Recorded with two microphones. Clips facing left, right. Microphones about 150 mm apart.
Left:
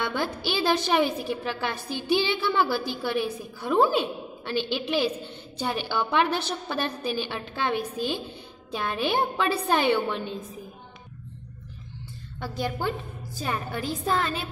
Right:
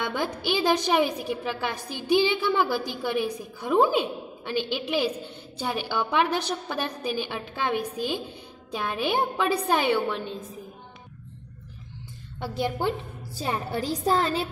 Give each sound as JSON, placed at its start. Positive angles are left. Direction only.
{"t": 0.0, "sound": "a woman's voice", "side_deg": -15}
{"t": 12.4, "sound": "a woman's voice", "side_deg": -25}